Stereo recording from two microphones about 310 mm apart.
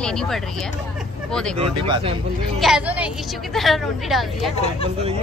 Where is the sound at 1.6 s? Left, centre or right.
Centre.